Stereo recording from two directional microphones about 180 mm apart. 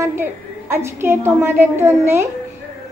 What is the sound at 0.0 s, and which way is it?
A woman's voice, 15° right (ahead or behind).